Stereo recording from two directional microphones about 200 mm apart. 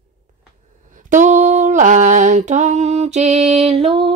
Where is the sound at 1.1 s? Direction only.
35° right (ahead or behind).